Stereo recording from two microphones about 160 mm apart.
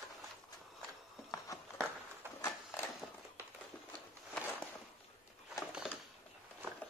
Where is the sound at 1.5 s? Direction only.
20° left (ahead or behind).